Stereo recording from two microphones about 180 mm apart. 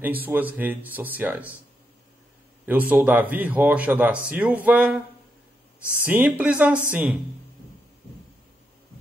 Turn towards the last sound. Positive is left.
turn(degrees=-5)  # may be behind; listen again after turning